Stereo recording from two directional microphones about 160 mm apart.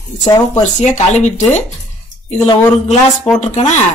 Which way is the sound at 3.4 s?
45° left (ahead or behind).